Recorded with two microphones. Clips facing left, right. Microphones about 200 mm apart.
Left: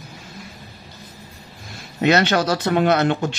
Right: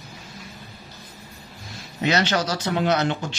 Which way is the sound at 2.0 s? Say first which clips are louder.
Left 5 dB; 55° left (ahead or behind).